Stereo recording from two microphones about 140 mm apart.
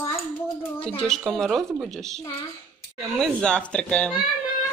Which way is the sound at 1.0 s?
Centre (ahead or behind).